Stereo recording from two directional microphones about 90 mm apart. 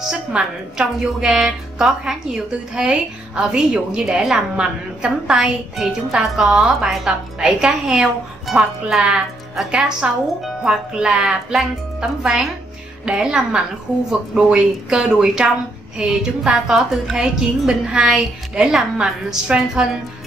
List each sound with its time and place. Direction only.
0.0 s a woman's voice: 5° right (ahead or behind)